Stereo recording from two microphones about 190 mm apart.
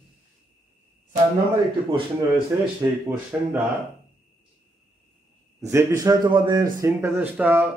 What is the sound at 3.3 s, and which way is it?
Speech, 5° right (ahead or behind).